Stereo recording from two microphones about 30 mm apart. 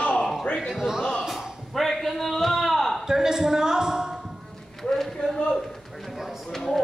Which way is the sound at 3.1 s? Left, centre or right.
Centre.